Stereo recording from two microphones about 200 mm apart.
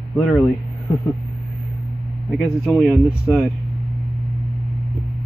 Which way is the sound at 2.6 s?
Centre (ahead or behind).